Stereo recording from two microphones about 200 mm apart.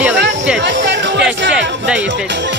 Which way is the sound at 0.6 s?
65° right (ahead or behind).